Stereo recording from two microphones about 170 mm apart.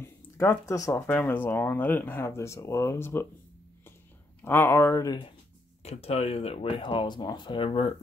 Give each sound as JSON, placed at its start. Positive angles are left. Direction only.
{"t": 0.0, "sound": "speech", "side_deg": 15}
{"t": 4.4, "sound": "speech", "side_deg": 10}
{"t": 5.8, "sound": "speech", "side_deg": 40}